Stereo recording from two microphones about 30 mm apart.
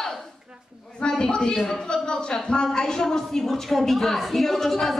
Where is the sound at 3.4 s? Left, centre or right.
Centre.